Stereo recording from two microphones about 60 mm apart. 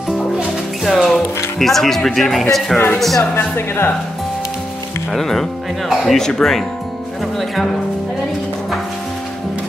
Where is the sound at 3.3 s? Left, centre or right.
Left.